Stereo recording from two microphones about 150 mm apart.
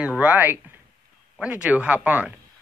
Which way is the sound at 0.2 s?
10° right (ahead or behind).